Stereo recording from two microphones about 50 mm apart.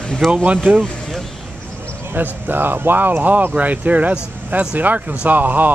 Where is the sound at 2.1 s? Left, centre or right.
Right.